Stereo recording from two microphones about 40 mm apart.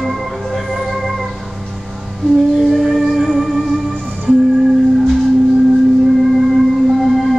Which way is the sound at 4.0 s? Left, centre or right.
Right.